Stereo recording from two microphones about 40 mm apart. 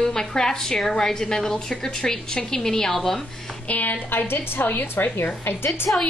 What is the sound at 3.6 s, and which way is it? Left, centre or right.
Speech, left.